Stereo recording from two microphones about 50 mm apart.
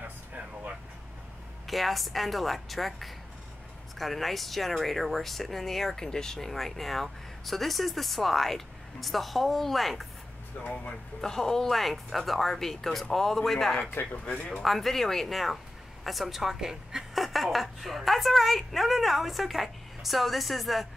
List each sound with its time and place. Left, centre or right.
1.7 s speech: centre
10.6 s speech: left
11.1 s speech: centre
14.1 s speech: left
14.6 s speech: centre